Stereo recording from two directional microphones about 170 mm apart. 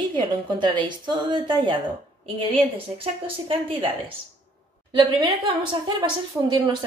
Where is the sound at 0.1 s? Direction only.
25° right (ahead or behind).